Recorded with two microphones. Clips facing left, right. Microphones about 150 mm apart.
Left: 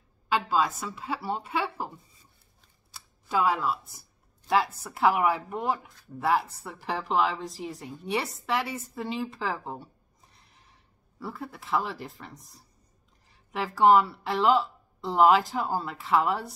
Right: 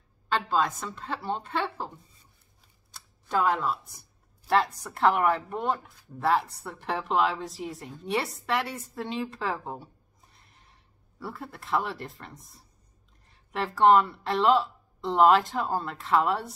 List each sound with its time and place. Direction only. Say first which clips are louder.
0.3 s speech: left 1 dB; 5° left (ahead or behind)
2.9 s speech: even; 5° left (ahead or behind)
13.3 s a sound: right 1 dB; centre (ahead or behind)
13.7 s speech: even; 5° left (ahead or behind)